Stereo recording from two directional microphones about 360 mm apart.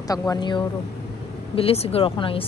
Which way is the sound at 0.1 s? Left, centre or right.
Centre.